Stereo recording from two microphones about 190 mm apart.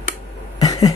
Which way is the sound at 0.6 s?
20° left (ahead or behind).